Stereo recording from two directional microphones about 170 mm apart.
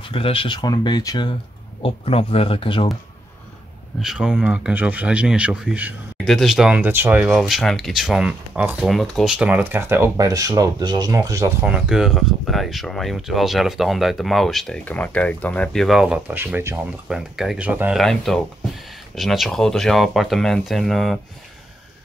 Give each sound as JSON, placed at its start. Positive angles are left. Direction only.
{"t": 0.0, "sound": "speech", "side_deg": 30}
{"t": 4.0, "sound": "speech", "side_deg": -5}
{"t": 11.6, "sound": "speech", "side_deg": -5}